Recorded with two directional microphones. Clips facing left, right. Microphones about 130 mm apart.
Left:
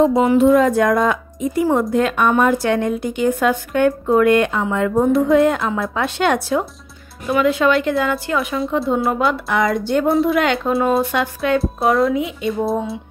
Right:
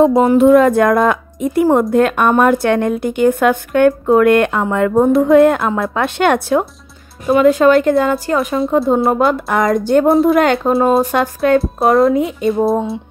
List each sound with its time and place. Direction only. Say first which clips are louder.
0.0 s a woman's voice: right 3 dB; 50° right (ahead or behind)
7.2 s speech: right 6 dB; 35° right (ahead or behind)
8.7 s speech: right 5 dB; 30° right (ahead or behind)
9.1 s speech: right 4 dB; 45° right (ahead or behind)
10.7 s speech: right 4 dB; 35° right (ahead or behind)